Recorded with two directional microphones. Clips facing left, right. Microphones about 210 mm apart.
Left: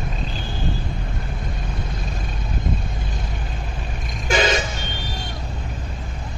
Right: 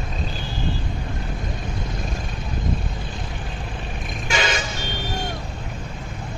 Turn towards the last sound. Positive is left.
turn(degrees=45)  # may be behind; listen again after turning